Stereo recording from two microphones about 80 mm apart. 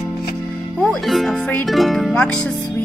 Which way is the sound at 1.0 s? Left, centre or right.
Centre.